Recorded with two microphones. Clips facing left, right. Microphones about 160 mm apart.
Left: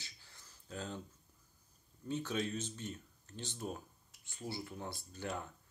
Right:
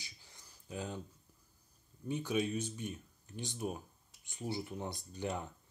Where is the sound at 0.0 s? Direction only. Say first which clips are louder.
Right 1 dB; 15° right (ahead or behind).